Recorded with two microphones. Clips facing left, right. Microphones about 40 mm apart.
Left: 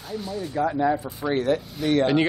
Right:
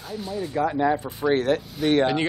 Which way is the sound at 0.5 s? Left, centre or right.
Right.